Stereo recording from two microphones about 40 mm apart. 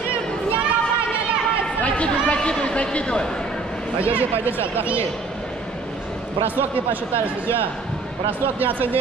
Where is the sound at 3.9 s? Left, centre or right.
Right.